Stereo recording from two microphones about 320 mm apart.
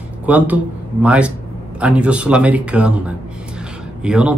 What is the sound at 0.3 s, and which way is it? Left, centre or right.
Speech, centre.